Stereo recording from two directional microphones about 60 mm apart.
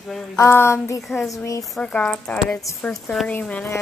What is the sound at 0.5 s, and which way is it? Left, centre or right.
Speech, left.